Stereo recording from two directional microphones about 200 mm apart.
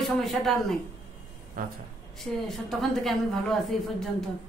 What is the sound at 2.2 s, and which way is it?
A woman's voice, centre (ahead or behind).